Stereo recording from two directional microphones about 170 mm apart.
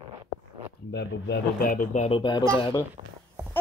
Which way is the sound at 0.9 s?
75° left (ahead or behind).